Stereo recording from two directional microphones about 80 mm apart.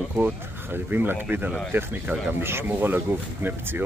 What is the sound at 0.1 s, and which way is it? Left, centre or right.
Speech, right.